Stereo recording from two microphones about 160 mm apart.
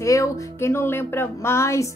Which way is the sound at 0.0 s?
20° left (ahead or behind).